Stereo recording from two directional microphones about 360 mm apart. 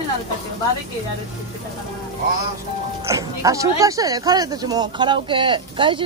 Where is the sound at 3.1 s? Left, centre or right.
Centre.